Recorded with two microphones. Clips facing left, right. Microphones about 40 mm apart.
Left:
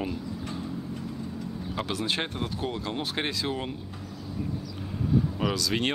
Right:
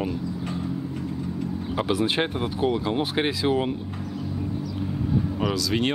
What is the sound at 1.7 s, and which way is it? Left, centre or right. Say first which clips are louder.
Speech: right 6 dB; centre.